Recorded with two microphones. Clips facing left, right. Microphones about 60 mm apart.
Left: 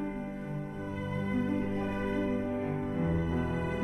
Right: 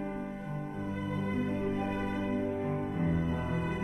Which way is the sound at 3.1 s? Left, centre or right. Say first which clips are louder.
Even; left.